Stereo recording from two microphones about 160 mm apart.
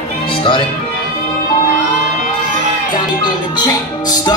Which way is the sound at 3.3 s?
25° left (ahead or behind).